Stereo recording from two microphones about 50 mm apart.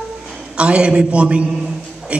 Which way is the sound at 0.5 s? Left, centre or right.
Right.